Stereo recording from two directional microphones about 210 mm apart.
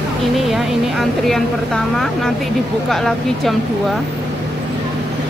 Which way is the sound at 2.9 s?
Centre (ahead or behind).